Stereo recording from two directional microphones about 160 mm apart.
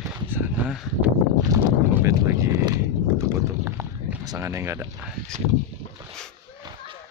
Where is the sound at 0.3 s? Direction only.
10° right (ahead or behind).